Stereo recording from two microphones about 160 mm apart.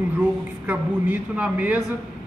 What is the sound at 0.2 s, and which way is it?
A man's voice, 10° right (ahead or behind).